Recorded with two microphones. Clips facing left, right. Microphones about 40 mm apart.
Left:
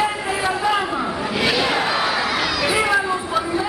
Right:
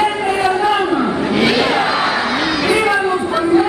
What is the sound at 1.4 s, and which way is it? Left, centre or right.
Crowd, centre.